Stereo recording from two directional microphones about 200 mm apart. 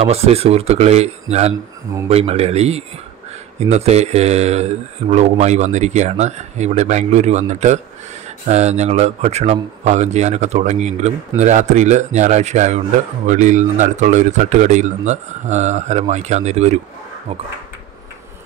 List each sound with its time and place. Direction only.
0.0 s a man's voice: 30° right (ahead or behind)